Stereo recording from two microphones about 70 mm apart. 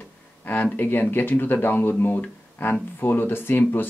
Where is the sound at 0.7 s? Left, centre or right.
Left.